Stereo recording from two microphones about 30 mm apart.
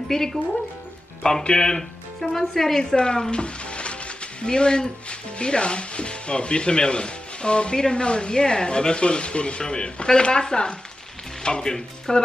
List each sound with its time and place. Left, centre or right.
0.1 s speech: centre
1.4 s speech: left
1.8 s a woman's voice: centre
3.0 s music: left
4.5 s speech: left